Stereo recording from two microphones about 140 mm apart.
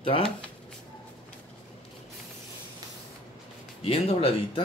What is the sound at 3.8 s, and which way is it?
Speech, 40° left (ahead or behind).